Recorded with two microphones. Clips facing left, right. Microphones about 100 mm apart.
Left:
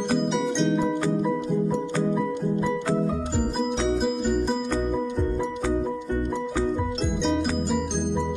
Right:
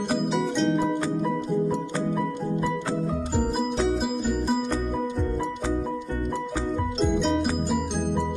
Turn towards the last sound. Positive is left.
turn(degrees=-5)  # may be behind; listen again after turning